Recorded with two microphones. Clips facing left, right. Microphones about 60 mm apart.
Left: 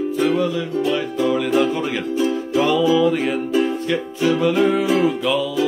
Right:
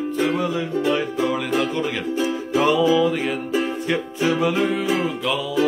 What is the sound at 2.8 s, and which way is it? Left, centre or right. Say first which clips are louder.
Music: left 2 dB; centre.